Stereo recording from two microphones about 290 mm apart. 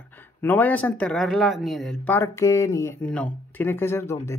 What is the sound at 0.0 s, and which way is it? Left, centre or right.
Speech, centre.